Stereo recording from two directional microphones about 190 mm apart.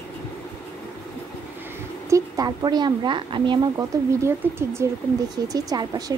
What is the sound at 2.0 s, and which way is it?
A woman's voice, 15° right (ahead or behind).